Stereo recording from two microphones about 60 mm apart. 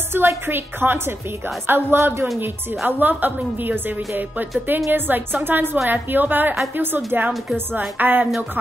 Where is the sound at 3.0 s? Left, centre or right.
Right.